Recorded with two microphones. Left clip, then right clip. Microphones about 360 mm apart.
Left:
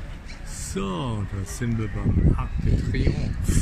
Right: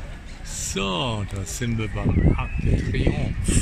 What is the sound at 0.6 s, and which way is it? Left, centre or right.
Speech, centre.